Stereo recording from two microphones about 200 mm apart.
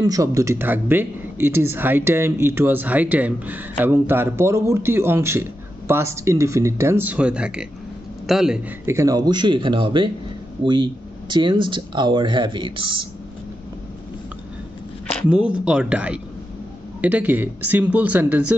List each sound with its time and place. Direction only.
0.0 s speech: 15° right (ahead or behind)
15.2 s speech: 5° right (ahead or behind)